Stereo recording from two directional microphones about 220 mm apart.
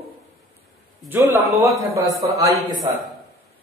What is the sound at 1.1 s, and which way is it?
A man's voice, 10° right (ahead or behind).